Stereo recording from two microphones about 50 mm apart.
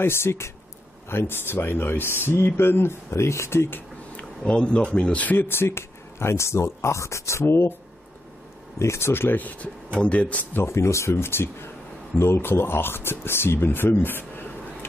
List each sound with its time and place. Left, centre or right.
0.0 s speech: left
1.0 s speech: left
4.5 s speech: centre
5.4 s speech: left
8.7 s speech: left
9.4 s speech: left
10.5 s speech: left